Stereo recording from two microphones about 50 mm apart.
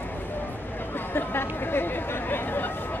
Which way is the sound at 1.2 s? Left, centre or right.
Left.